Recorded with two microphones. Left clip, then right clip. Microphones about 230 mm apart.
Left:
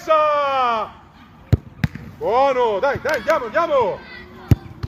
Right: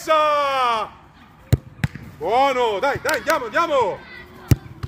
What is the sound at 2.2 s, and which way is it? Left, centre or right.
Speech, right.